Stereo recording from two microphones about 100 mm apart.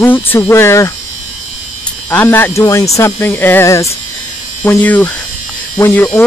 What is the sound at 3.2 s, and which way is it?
Speech, 20° left (ahead or behind).